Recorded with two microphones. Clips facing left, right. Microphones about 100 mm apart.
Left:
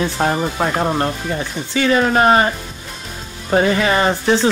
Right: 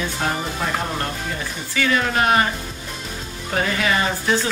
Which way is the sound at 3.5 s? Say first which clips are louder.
Left 7 dB; 30° left (ahead or behind).